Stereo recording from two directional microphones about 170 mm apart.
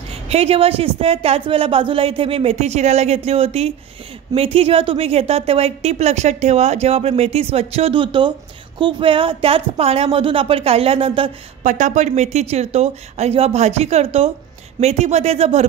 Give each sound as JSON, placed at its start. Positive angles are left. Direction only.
{"t": 0.3, "sound": "a woman's voice", "side_deg": -35}
{"t": 11.6, "sound": "a woman's voice", "side_deg": -45}